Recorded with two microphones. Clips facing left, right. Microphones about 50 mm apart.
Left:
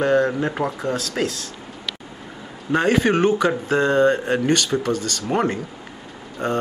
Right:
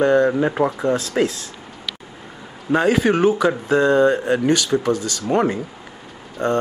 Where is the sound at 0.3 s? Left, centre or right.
Centre.